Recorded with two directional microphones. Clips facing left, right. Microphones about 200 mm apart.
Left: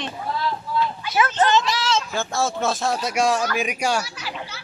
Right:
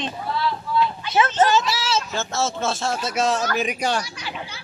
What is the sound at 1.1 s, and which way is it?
Speech, 25° right (ahead or behind).